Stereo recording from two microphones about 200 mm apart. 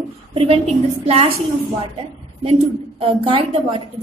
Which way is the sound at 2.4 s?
30° right (ahead or behind).